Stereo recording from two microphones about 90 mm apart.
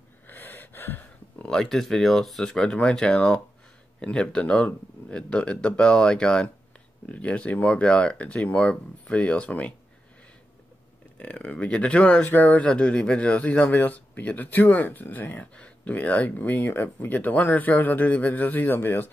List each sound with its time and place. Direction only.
0.3 s gasp: 20° left (ahead or behind)
1.4 s speech: 5° left (ahead or behind)
11.1 s speech: 15° left (ahead or behind)